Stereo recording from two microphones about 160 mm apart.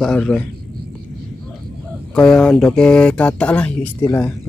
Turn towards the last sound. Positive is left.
turn(degrees=15)  # may be behind; listen again after turning